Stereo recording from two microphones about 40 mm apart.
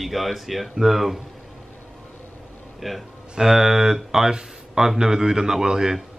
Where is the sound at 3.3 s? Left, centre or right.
Centre.